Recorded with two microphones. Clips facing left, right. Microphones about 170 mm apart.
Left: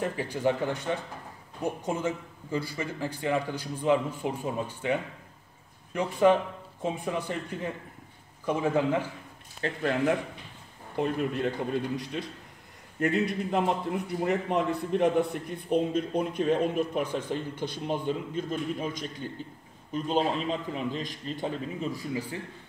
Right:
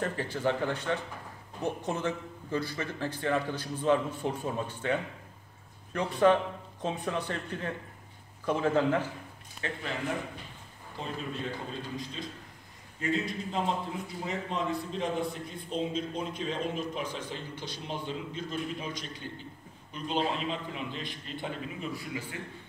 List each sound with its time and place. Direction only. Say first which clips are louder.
0.0 s a man's voice: left 3 dB; 15° left (ahead or behind)
9.6 s a man's voice: left 5 dB; 35° left (ahead or behind)
11.0 s a man's voice: left 9 dB; 65° left (ahead or behind); by 22.4 s 35° left (ahead or behind)